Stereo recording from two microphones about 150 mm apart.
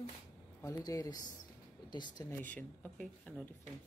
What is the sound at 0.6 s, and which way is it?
Speech, 20° left (ahead or behind).